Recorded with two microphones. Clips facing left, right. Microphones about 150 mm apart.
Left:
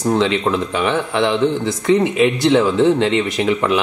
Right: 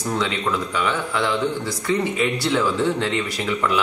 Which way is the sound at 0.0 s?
25° left (ahead or behind).